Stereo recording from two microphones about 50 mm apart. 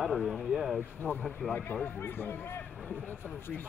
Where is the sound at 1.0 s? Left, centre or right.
Left.